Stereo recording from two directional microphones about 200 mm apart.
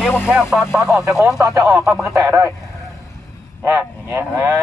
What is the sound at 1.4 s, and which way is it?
Cattle, 15° right (ahead or behind).